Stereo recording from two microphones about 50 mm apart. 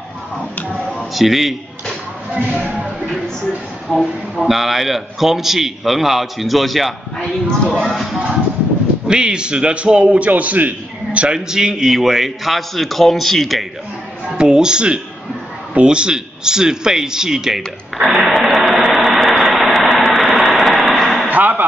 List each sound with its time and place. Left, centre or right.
0.7 s a sound: centre
2.5 s speech: right
3.0 s music: centre
4.0 s a man's voice: centre
7.2 s a man's voice: centre
7.7 s a man's voice: centre
9.0 s a man's voice: centre
11.1 s a man's voice: centre
14.3 s a man's voice: centre
19.0 s a sound: centre
21.3 s a sound: right